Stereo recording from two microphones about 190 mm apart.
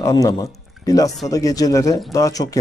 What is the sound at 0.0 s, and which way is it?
A man's voice, 20° left (ahead or behind).